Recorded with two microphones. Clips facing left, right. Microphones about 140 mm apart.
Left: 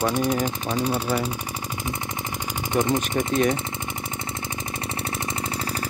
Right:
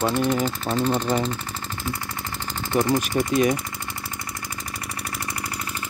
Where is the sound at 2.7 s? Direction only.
20° left (ahead or behind).